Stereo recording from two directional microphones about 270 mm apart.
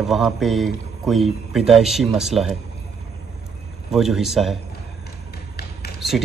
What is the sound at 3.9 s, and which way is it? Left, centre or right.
Speech, centre.